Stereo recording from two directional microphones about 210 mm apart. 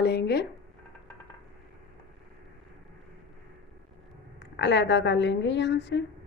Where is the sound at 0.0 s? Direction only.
50° left (ahead or behind).